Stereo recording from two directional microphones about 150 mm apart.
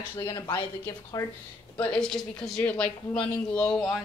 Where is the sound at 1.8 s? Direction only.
5° left (ahead or behind).